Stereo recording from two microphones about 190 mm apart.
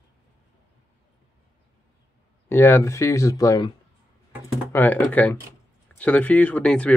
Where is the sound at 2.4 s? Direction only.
10° left (ahead or behind).